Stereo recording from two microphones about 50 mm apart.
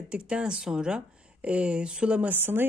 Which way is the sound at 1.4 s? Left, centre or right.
Right.